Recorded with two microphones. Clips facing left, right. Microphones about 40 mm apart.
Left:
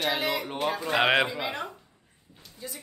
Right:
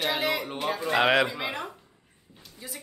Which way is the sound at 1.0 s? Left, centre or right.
Centre.